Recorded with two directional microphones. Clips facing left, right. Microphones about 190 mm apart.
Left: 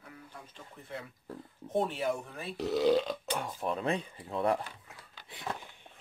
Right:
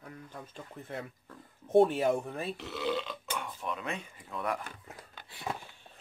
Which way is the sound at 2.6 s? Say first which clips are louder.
Left 11 dB; 40° left (ahead or behind).